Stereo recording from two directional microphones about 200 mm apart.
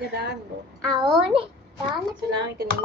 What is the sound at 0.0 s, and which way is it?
Speech, 55° right (ahead or behind).